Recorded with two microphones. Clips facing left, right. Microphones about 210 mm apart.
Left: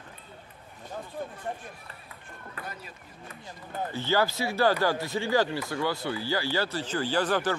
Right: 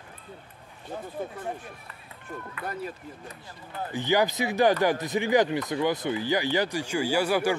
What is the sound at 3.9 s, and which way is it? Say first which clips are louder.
Speech: right 3 dB; 15° right (ahead or behind).